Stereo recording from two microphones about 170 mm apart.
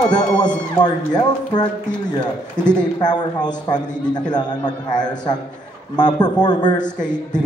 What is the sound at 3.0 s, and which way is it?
A man's voice, 25° left (ahead or behind).